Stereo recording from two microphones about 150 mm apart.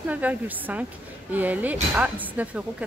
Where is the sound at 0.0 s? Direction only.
10° right (ahead or behind).